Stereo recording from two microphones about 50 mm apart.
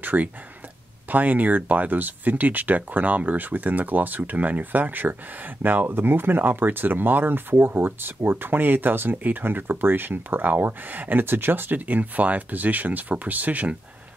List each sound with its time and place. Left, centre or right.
0.0 s speech: right